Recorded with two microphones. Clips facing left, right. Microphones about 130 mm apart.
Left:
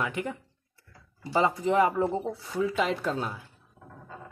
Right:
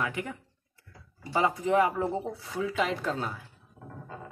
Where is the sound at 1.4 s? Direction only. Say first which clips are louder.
Left 1 dB; 20° left (ahead or behind).